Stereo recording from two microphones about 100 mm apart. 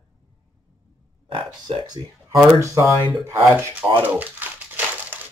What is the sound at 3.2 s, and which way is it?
Speech, 25° right (ahead or behind).